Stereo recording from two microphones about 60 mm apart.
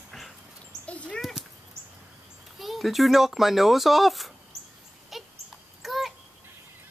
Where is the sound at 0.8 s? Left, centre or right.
Left.